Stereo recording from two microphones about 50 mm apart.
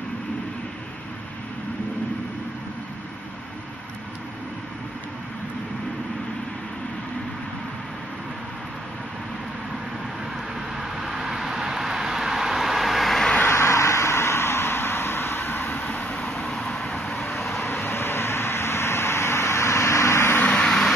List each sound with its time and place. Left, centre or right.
10.8 s vehicle: centre
13.5 s vehicle: left
16.1 s vehicle: centre
17.3 s vehicle: centre
17.6 s vehicle: left
20.5 s vehicle: centre